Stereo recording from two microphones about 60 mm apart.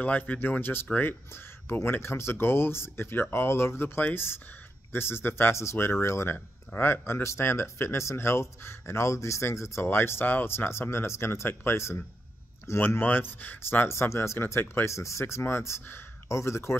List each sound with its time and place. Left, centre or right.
0.0 s speech: left
6.3 s speech: left
9.8 s speech: left
13.0 s speech: left
13.8 s speech: left
14.9 s speech: left
16.3 s speech: left